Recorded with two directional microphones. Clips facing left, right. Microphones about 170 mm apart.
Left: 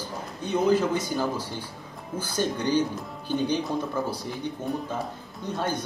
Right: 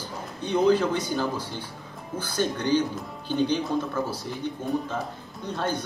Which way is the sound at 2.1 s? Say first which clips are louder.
Even; 10° left (ahead or behind).